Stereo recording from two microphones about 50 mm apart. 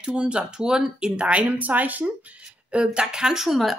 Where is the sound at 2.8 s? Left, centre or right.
Centre.